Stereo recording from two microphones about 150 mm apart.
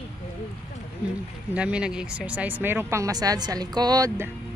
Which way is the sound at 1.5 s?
5° right (ahead or behind).